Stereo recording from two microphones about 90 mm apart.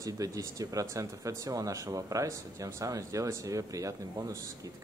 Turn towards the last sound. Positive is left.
turn(degrees=-35)  # may be behind; listen again after turning